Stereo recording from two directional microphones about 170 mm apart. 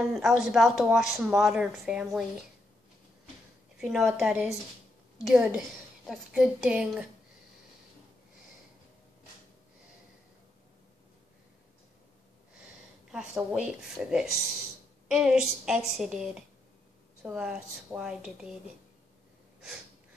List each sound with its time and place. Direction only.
0.1 s speech: 5° right (ahead or behind)
3.8 s speech: centre (ahead or behind)
13.1 s speech: 5° right (ahead or behind)